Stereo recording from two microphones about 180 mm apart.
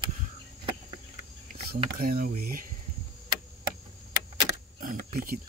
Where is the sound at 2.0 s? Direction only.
55° right (ahead or behind).